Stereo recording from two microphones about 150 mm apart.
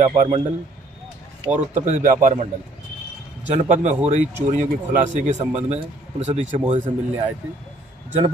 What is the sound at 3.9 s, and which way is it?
Speech, 50° right (ahead or behind).